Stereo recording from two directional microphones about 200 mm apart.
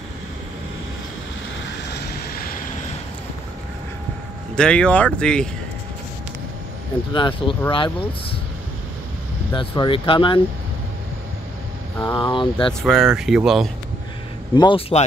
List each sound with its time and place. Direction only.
2.0 s vehicle: 45° left (ahead or behind)
4.6 s speech: 5° left (ahead or behind)
7.2 s speech: 25° left (ahead or behind)
9.6 s speech: 25° left (ahead or behind)
12.0 s speech: 20° left (ahead or behind)
12.8 s speech: centre (ahead or behind)
14.5 s speech: 25° left (ahead or behind)